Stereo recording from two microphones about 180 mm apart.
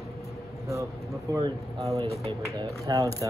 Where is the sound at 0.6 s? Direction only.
15° right (ahead or behind).